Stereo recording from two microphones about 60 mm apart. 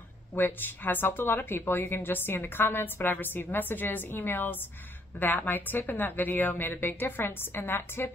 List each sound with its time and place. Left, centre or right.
0.3 s speech: left